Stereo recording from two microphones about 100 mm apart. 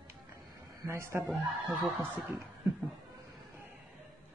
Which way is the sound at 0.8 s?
25° right (ahead or behind).